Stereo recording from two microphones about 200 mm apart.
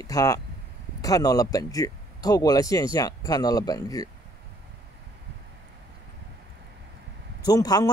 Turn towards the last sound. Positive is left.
turn(degrees=20)  # may be behind; listen again after turning